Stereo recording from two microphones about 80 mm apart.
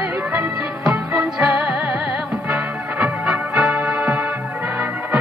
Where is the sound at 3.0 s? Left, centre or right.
Centre.